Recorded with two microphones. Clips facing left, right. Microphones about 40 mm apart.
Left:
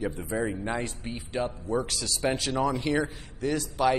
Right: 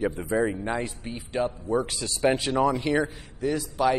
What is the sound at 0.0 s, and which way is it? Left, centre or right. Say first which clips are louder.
Speech: right 5 dB; right.